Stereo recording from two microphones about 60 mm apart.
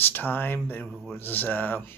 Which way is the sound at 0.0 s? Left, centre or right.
Left.